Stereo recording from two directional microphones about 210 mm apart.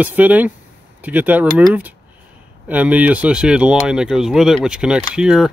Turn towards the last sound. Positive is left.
turn(degrees=-5)  # may be behind; listen again after turning